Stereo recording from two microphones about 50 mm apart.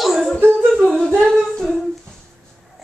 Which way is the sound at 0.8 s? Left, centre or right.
Centre.